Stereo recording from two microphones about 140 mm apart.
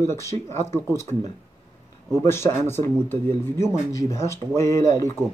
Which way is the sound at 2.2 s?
20° left (ahead or behind).